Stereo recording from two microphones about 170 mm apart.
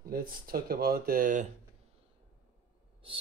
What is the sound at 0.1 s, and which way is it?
Speech, 60° right (ahead or behind).